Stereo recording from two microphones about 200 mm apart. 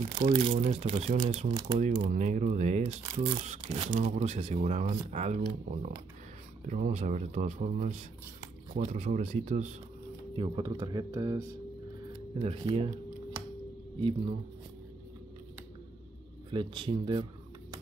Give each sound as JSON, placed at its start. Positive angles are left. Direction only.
{"t": 0.2, "sound": "speech", "side_deg": -30}
{"t": 12.4, "sound": "speech", "side_deg": -30}
{"t": 16.4, "sound": "speech", "side_deg": -25}